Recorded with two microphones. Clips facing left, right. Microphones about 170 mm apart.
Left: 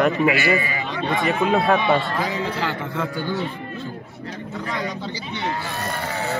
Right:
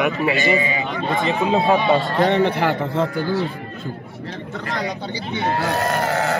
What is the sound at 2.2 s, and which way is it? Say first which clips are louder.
Speech: right 8 dB; 65° right (ahead or behind).